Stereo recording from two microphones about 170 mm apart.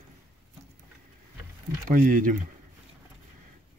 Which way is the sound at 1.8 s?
50° right (ahead or behind).